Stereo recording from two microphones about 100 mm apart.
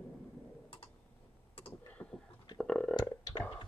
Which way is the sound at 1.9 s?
10° left (ahead or behind).